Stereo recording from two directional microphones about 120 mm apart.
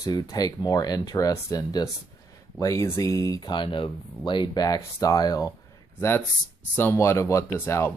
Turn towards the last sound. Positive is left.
turn(degrees=25)  # may be behind; listen again after turning